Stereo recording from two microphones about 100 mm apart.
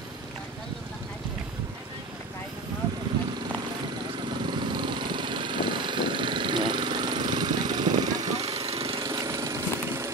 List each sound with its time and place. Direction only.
4.5 s vehicle: 50° right (ahead or behind)
8.5 s lawn mower: 70° right (ahead or behind)
9.1 s a sound: 30° right (ahead or behind)